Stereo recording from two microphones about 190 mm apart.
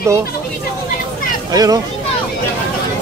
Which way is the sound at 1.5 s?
20° right (ahead or behind).